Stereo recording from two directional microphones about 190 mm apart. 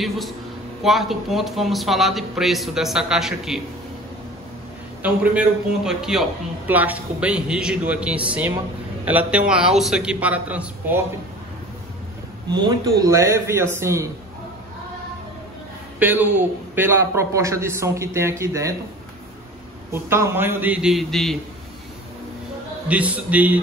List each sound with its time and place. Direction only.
0.8 s a man's voice: centre (ahead or behind)
5.0 s a man's voice: 5° right (ahead or behind)
12.4 s a man's voice: 20° right (ahead or behind)
16.0 s a man's voice: 10° right (ahead or behind)
19.9 s a man's voice: 10° right (ahead or behind)
22.8 s a man's voice: 5° right (ahead or behind)